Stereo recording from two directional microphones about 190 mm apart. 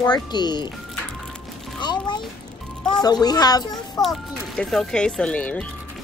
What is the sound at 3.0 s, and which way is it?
A child's voice, 20° left (ahead or behind).